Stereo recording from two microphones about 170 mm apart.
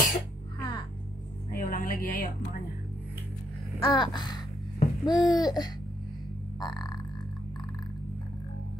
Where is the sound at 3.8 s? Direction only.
25° left (ahead or behind).